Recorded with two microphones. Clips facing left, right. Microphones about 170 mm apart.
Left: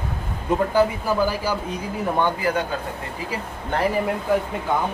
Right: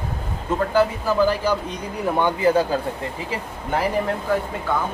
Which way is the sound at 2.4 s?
30° right (ahead or behind).